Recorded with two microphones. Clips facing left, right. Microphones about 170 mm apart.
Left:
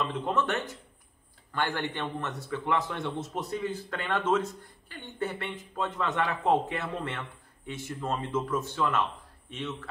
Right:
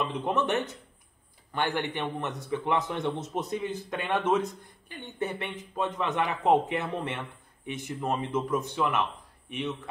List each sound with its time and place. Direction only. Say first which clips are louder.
0.0 s a man's voice: right 1 dB; 15° right (ahead or behind)